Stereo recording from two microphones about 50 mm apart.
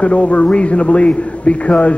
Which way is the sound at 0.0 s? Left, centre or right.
Left.